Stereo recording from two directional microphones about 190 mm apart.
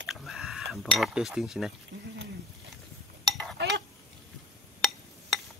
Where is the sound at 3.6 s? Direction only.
70° right (ahead or behind).